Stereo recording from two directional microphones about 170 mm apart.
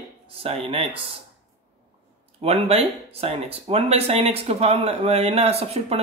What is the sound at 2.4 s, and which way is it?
Speech, 35° right (ahead or behind).